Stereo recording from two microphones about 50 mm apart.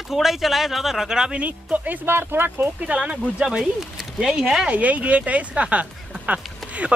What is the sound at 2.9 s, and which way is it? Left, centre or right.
Speech, right.